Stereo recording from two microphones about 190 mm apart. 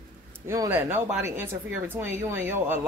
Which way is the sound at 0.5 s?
10° right (ahead or behind).